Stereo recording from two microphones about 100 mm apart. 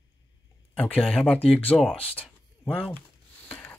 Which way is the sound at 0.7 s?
15° left (ahead or behind).